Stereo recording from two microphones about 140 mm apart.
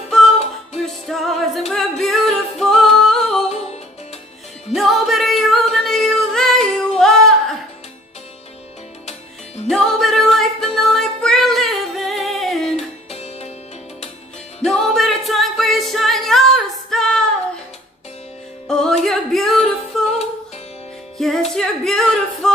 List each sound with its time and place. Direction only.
0.8 s music: centre (ahead or behind)
1.7 s singing: centre (ahead or behind)
3.4 s music: 50° left (ahead or behind)
4.7 s singing: centre (ahead or behind)
9.7 s music: centre (ahead or behind)
12.7 s music: 50° left (ahead or behind)
14.6 s a capella: 5° left (ahead or behind)
18.7 s singing: 5° left (ahead or behind)
21.2 s music: centre (ahead or behind)